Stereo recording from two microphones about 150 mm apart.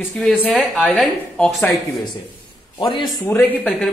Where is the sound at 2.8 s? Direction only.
35° left (ahead or behind).